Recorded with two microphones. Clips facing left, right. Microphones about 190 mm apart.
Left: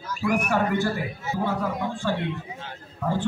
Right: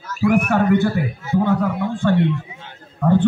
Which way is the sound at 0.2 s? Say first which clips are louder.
Right 7 dB; 60° right (ahead or behind).